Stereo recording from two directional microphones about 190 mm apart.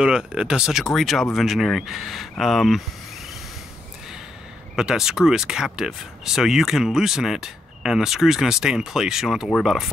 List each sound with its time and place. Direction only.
0.0 s speech: 5° right (ahead or behind)
4.7 s speech: 5° right (ahead or behind)